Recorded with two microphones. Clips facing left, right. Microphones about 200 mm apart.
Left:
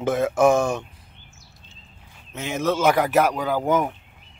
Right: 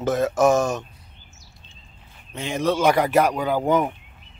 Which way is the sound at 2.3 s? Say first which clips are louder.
Right 1 dB; 5° left (ahead or behind).